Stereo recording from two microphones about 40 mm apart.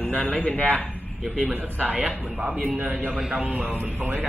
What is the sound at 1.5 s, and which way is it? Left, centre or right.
Speech, right.